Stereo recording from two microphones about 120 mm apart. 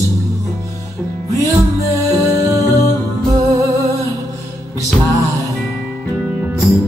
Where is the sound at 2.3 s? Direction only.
25° right (ahead or behind).